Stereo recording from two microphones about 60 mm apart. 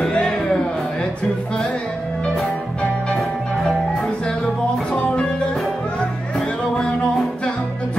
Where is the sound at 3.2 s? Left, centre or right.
Centre.